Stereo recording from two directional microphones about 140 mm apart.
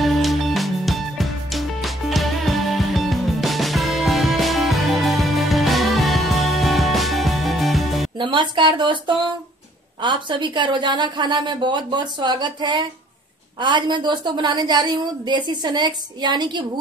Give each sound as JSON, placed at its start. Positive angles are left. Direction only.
{"t": 0.0, "sound": "music", "side_deg": 0}
{"t": 8.2, "sound": "a woman's voice", "side_deg": -35}